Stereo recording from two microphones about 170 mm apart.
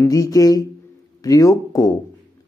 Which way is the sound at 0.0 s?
20° left (ahead or behind).